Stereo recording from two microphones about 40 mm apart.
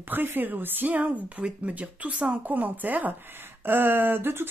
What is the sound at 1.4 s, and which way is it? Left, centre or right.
Speech, right.